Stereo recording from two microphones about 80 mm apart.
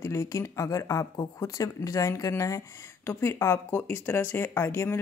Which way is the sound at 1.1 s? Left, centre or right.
Left.